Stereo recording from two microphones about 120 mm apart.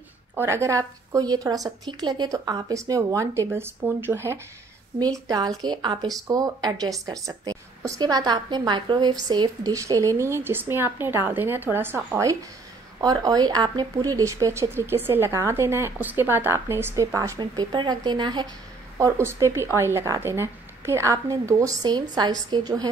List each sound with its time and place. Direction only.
0.4 s speech: 25° right (ahead or behind)
5.6 s speech: 35° right (ahead or behind)
17.4 s speech: 35° right (ahead or behind)
18.9 s speech: 25° right (ahead or behind)